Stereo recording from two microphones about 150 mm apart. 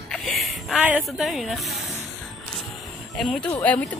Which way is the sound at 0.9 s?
Centre (ahead or behind).